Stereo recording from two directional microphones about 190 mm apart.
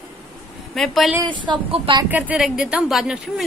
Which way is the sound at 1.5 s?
25° right (ahead or behind).